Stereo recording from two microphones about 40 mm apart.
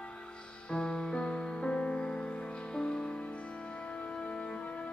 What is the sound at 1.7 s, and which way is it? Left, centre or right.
Music, left.